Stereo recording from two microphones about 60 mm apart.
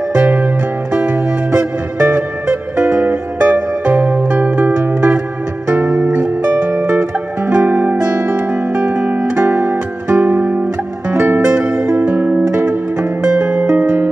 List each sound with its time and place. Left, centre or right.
2.9 s music: right
5.8 s music: right
7.0 s music: right
12.0 s music: right